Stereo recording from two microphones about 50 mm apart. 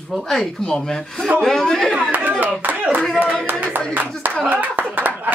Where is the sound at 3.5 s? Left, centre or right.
Right.